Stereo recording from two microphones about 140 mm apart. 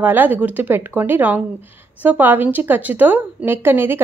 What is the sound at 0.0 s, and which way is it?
A woman's voice, 15° right (ahead or behind).